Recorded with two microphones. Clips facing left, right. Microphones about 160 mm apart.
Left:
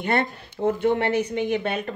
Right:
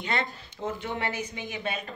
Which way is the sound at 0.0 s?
55° left (ahead or behind).